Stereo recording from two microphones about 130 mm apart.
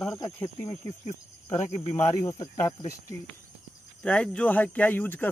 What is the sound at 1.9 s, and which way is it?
Speech, 20° left (ahead or behind).